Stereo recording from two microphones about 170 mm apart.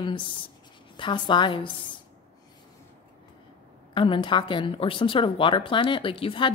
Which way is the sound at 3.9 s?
30° left (ahead or behind).